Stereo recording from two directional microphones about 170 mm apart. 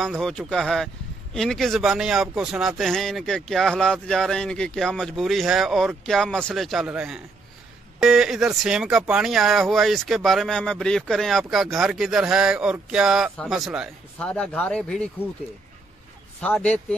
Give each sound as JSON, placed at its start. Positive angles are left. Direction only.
{"t": 0.2, "sound": "speech", "side_deg": 5}
{"t": 16.3, "sound": "speech", "side_deg": 10}